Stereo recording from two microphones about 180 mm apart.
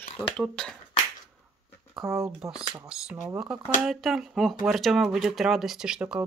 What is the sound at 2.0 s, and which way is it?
Speech, 15° right (ahead or behind).